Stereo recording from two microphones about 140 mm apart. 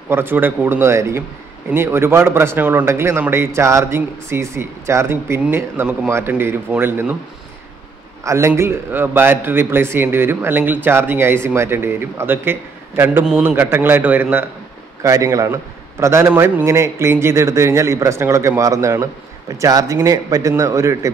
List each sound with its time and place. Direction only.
0.1 s speech: 15° right (ahead or behind)
8.2 s speech: 20° right (ahead or behind)
15.0 s a man's voice: 20° right (ahead or behind)